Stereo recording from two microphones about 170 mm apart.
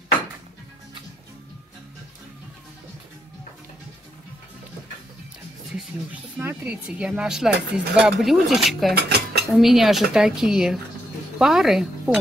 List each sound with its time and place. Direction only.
5.8 s speech: 10° right (ahead or behind)
8.9 s dishes: 70° right (ahead or behind)
9.5 s speech: centre (ahead or behind)